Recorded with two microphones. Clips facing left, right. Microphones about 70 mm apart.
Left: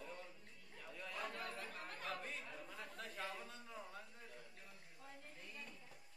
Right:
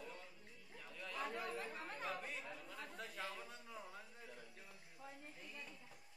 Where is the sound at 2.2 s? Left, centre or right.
Centre.